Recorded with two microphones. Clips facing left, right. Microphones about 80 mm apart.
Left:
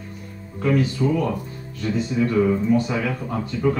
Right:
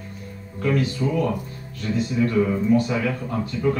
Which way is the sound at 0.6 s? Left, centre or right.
Centre.